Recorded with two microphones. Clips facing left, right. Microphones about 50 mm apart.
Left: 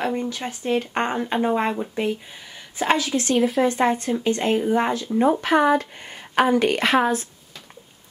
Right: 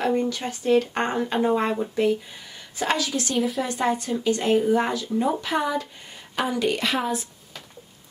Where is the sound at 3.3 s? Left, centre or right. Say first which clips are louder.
Left 6 dB; centre.